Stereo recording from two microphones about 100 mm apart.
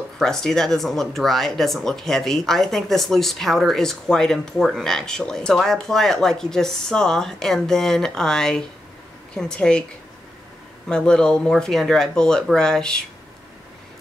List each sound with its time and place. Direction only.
0.2 s speech: 5° left (ahead or behind)
10.9 s speech: 10° left (ahead or behind)